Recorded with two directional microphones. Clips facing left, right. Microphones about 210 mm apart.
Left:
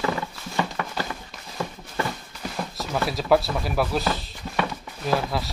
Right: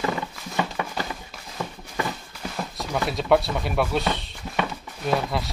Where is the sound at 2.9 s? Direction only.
Centre (ahead or behind).